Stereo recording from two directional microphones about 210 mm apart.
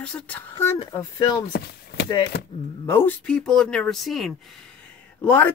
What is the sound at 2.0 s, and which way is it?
Speech, 20° left (ahead or behind).